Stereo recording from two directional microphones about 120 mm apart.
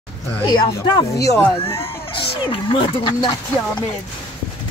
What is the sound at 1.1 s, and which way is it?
Speech, 25° left (ahead or behind).